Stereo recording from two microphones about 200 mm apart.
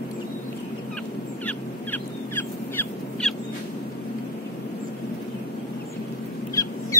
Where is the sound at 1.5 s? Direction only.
10° left (ahead or behind).